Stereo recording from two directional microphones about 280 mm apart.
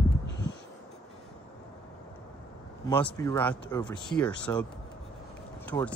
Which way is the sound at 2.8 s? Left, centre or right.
Centre.